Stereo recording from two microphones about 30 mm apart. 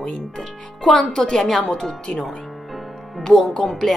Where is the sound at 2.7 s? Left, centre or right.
Centre.